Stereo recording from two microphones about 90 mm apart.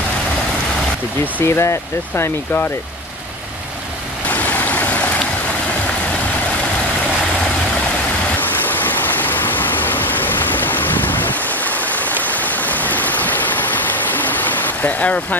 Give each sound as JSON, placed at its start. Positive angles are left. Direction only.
{"t": 1.2, "sound": "speech", "side_deg": 30}
{"t": 4.3, "sound": "stream", "side_deg": 15}
{"t": 8.4, "sound": "a sound", "side_deg": 20}